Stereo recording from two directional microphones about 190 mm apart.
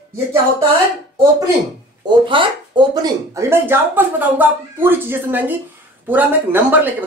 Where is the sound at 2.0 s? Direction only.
20° right (ahead or behind).